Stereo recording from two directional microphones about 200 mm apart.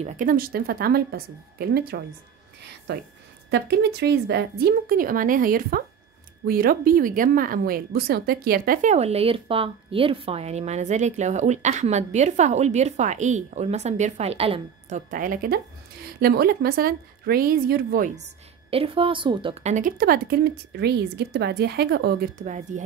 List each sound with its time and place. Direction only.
0.0 s a woman's voice: 40° right (ahead or behind)
8.9 s speech: 30° right (ahead or behind)